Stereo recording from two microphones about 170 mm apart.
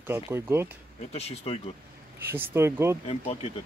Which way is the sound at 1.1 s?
35° left (ahead or behind).